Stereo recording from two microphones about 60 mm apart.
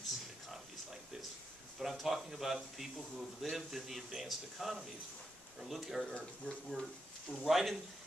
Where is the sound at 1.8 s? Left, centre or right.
Centre.